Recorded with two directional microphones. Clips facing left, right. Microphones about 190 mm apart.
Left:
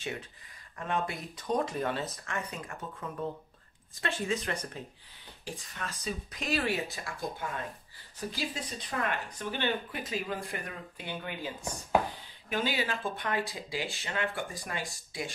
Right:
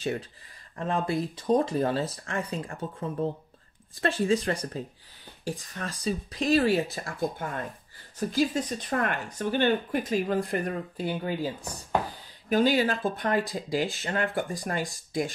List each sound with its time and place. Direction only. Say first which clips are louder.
0.0 s speech: right 8 dB; 35° right (ahead or behind)